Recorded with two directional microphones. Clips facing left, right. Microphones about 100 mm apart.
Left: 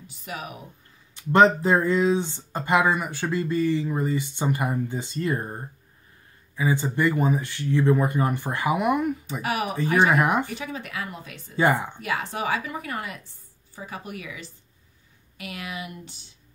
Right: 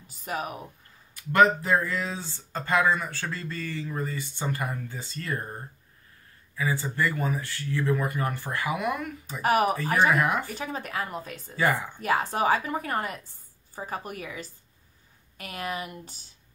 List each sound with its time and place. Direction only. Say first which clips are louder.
0.1 s a woman's voice: right 4 dB; 40° right (ahead or behind)
1.1 s speech: left 3 dB; 25° left (ahead or behind)
9.4 s a woman's voice: right 6 dB; 40° right (ahead or behind)
10.0 s speech: left 1 dB; 20° left (ahead or behind)
10.5 s a woman's voice: even; 40° right (ahead or behind)
11.5 s speech: left 4 dB; 25° left (ahead or behind)
12.0 s a woman's voice: right 3 dB; 40° right (ahead or behind)